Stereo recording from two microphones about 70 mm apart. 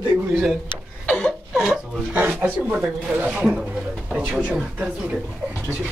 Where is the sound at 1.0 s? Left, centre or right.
Centre.